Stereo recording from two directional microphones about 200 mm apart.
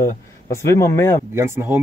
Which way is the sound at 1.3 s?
10° right (ahead or behind).